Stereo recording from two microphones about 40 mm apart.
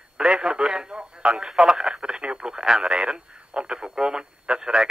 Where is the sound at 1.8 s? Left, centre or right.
Centre.